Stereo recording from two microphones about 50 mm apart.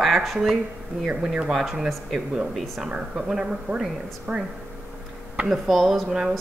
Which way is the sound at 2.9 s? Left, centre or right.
Centre.